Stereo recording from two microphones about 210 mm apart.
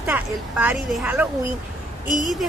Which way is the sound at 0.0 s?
10° right (ahead or behind).